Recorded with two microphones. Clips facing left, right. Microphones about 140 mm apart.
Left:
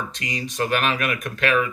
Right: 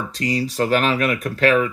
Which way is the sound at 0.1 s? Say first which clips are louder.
Right 8 dB; 35° right (ahead or behind).